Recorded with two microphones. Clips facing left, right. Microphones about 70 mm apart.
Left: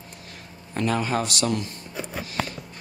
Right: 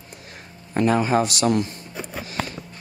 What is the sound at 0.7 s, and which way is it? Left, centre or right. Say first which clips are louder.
Speech: right 5 dB; centre.